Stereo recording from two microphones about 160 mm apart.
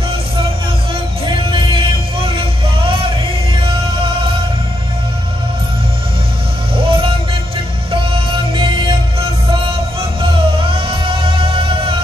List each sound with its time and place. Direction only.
1.5 s music: 30° right (ahead or behind)
6.9 s music: 35° right (ahead or behind)
8.5 s music: 30° right (ahead or behind)